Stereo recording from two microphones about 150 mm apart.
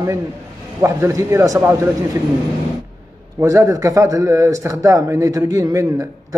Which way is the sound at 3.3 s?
20° right (ahead or behind).